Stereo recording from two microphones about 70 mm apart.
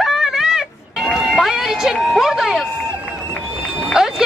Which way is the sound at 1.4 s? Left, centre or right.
Centre.